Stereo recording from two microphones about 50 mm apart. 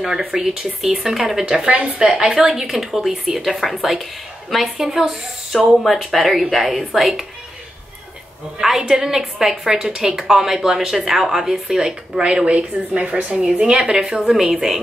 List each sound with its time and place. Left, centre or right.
0.3 s speech: centre
1.7 s a woman's voice: right
2.0 s a woman's voice: centre
8.5 s a woman's voice: centre